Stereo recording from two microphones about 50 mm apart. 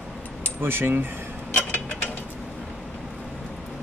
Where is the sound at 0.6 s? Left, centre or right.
Right.